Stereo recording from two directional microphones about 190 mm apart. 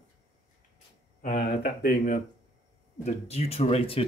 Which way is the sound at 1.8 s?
55° left (ahead or behind).